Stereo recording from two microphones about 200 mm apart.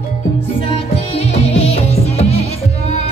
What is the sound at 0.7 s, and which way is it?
Music, 30° left (ahead or behind).